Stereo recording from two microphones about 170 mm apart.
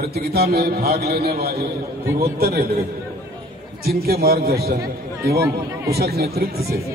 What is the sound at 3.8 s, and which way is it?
Speech, 65° right (ahead or behind).